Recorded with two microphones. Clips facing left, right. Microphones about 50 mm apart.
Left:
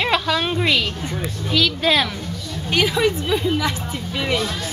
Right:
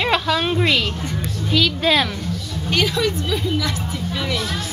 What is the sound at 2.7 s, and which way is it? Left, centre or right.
A woman's voice, centre.